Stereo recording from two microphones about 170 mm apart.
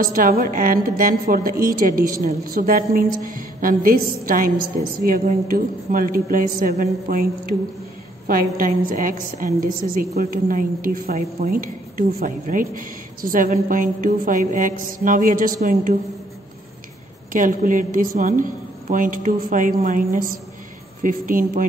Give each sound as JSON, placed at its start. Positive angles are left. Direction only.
{"t": 0.0, "sound": "a woman's voice", "side_deg": -55}
{"t": 17.3, "sound": "a woman's voice", "side_deg": -50}